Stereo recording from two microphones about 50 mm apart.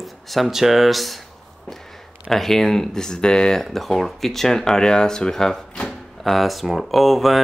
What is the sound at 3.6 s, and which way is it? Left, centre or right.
Speech, centre.